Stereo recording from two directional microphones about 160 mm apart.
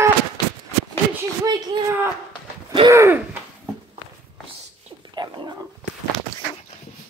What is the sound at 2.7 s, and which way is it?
Gasp, 25° right (ahead or behind).